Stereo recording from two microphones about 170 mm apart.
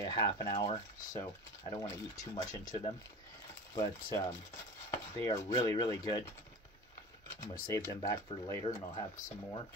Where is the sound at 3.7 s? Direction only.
20° left (ahead or behind).